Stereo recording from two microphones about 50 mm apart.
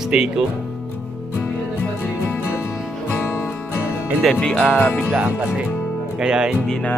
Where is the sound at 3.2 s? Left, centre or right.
Left.